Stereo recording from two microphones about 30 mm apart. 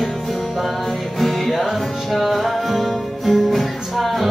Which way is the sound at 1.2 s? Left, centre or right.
Centre.